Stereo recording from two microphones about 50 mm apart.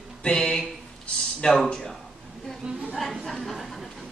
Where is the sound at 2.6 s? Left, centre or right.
Centre.